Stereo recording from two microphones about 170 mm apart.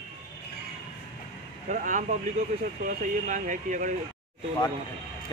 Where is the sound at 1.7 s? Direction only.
50° right (ahead or behind).